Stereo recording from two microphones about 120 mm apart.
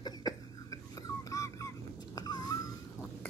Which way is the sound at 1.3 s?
25° left (ahead or behind).